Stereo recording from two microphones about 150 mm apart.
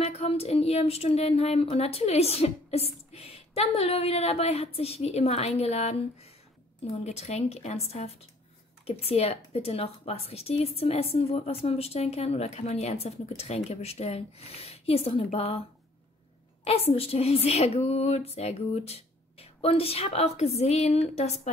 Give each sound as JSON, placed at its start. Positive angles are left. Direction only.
{"t": 0.0, "sound": "speech", "side_deg": 45}
{"t": 16.6, "sound": "speech", "side_deg": 40}